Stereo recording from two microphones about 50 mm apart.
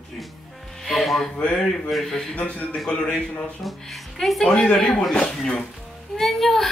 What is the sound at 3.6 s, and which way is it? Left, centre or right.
Music, centre.